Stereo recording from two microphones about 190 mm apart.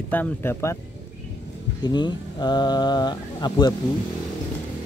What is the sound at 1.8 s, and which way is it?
Speech, 25° left (ahead or behind).